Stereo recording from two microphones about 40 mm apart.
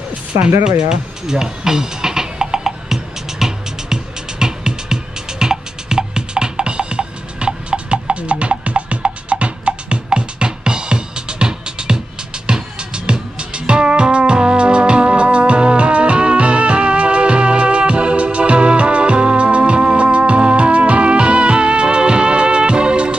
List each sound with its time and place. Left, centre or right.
0.4 s music: centre